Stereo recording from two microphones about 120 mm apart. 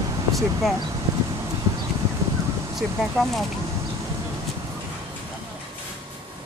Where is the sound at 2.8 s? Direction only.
Centre (ahead or behind).